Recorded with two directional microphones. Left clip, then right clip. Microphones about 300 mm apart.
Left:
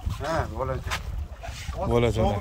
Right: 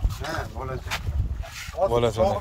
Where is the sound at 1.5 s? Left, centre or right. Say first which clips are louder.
Right 3 dB; centre.